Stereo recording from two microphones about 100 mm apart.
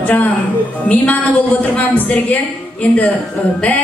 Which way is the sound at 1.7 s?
15° left (ahead or behind).